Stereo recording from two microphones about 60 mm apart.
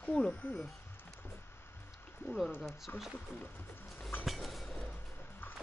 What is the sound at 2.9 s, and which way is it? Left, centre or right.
Speech, left.